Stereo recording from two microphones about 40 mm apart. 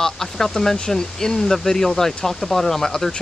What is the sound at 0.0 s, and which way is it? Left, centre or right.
Speech, centre.